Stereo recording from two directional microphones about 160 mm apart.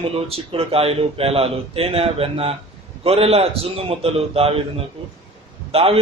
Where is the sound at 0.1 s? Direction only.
35° right (ahead or behind).